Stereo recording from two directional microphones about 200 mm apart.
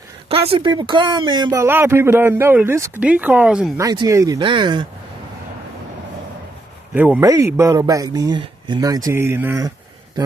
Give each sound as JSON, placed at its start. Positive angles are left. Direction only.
{"t": 0.3, "sound": "speech", "side_deg": -25}
{"t": 3.8, "sound": "speech", "side_deg": -20}
{"t": 6.9, "sound": "speech", "side_deg": -10}